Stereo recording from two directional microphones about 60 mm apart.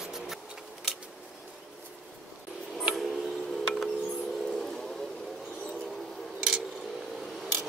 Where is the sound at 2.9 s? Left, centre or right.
Centre.